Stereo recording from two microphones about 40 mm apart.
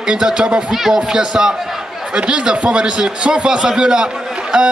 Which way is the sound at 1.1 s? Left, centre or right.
Centre.